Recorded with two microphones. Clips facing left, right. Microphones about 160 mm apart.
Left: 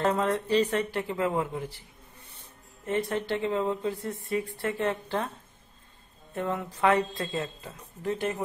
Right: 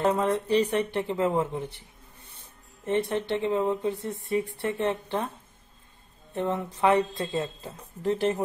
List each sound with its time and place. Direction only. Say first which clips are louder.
0.0 s speech: right 2 dB; 15° right (ahead or behind)
2.8 s speech: right 2 dB; 25° right (ahead or behind)
6.3 s speech: right 2 dB; 20° right (ahead or behind)